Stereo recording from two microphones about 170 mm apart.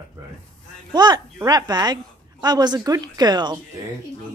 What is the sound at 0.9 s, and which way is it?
A woman's voice, 25° right (ahead or behind).